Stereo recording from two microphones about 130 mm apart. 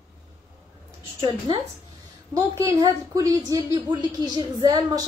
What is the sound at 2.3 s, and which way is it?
A woman's voice, 25° right (ahead or behind).